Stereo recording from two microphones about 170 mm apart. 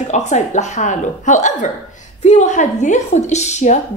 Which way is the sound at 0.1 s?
45° left (ahead or behind).